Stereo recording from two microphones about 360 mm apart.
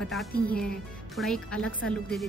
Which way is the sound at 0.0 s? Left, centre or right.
Centre.